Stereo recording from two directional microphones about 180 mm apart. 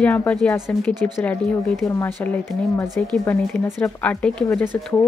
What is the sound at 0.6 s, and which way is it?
Speech, 5° left (ahead or behind).